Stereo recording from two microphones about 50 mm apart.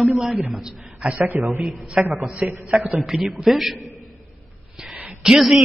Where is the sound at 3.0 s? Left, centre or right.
Centre.